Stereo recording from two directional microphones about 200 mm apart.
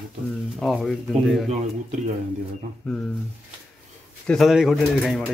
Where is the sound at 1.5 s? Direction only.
35° right (ahead or behind).